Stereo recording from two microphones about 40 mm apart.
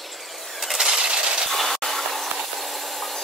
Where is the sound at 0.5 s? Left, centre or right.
Centre.